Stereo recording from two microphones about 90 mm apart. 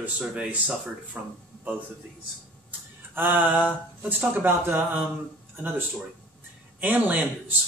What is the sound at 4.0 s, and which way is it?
Speech, 20° right (ahead or behind).